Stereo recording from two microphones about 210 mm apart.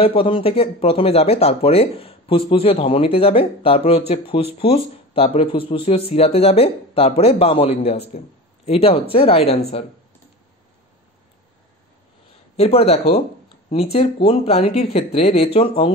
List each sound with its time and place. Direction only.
0.0 s speech: 25° left (ahead or behind)
12.5 s speech: 30° left (ahead or behind)